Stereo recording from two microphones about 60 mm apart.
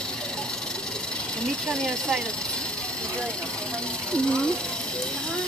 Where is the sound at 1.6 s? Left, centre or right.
Centre.